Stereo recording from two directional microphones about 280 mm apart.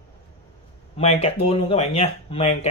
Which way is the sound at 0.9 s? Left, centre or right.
Left.